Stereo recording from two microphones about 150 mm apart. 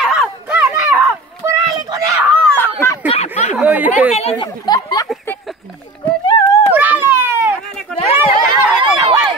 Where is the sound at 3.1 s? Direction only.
50° left (ahead or behind).